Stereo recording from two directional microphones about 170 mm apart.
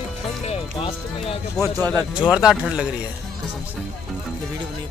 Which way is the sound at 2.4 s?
5° right (ahead or behind).